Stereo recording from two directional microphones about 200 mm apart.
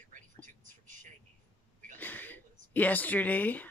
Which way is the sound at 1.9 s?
10° left (ahead or behind).